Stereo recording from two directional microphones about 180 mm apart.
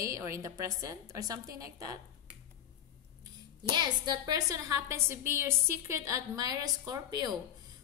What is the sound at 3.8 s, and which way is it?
A woman's voice, 20° right (ahead or behind).